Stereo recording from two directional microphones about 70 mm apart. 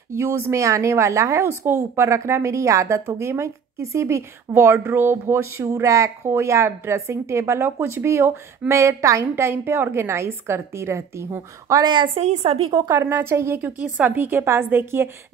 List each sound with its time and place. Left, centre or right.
0.1 s speech: right
9.3 s a woman's voice: right
12.9 s a woman's voice: right
13.6 s a woman's voice: right